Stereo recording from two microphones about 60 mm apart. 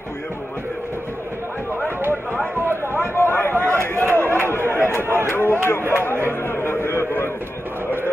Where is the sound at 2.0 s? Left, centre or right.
Right.